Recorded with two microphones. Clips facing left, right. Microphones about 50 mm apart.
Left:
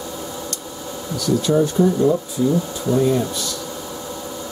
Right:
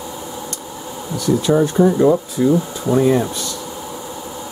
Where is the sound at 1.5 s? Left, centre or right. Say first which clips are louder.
Right 3 dB; right.